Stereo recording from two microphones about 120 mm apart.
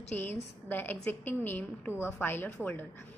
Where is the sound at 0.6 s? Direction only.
15° left (ahead or behind).